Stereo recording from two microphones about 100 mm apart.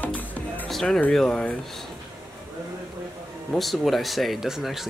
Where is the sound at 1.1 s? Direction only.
10° left (ahead or behind).